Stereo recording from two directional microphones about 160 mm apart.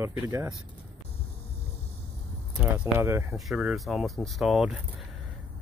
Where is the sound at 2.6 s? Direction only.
10° right (ahead or behind).